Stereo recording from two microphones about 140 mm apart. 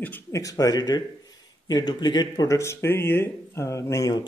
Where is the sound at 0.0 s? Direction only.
15° left (ahead or behind).